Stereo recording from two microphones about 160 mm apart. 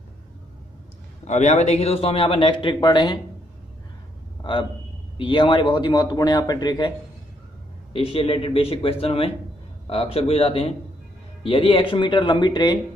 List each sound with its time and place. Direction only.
1.2 s a man's voice: 45° left (ahead or behind); by 3.2 s 30° left (ahead or behind)
4.4 s a sound: 30° left (ahead or behind)
5.1 s a man's voice: 30° left (ahead or behind)
7.9 s a man's voice: 35° left (ahead or behind)